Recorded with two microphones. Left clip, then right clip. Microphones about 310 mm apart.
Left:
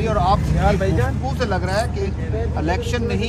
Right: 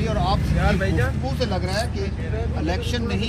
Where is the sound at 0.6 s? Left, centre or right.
Left.